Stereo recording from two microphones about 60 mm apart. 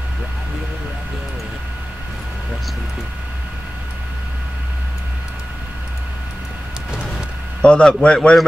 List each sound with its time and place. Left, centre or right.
7.6 s a man's voice: centre